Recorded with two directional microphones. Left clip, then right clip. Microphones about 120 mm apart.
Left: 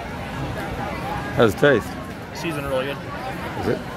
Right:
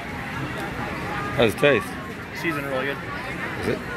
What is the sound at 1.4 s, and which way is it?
Speech, 40° left (ahead or behind).